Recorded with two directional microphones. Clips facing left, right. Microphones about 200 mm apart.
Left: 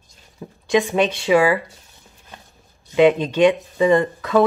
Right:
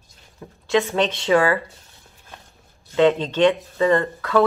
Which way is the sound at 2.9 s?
15° left (ahead or behind).